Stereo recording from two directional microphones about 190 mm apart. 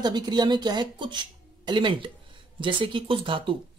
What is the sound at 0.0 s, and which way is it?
Speech, 20° right (ahead or behind).